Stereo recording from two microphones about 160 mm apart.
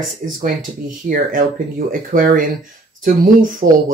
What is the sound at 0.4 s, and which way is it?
Speech, 55° right (ahead or behind).